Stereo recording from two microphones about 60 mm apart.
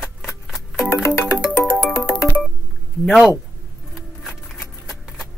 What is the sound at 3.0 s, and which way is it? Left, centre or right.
Speech, centre.